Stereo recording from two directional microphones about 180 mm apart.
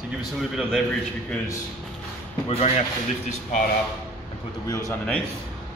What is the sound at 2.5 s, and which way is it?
Speech, 35° left (ahead or behind).